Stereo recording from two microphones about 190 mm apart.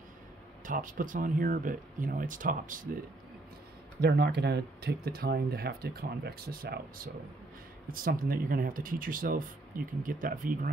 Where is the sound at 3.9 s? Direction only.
60° right (ahead or behind).